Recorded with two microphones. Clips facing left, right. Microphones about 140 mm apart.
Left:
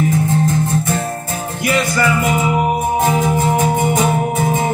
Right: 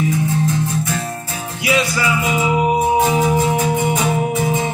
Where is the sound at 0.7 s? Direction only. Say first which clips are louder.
Left 3 dB; 50° left (ahead or behind).